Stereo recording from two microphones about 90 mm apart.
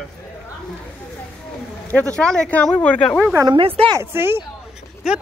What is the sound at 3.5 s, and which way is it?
Speech, 90° right.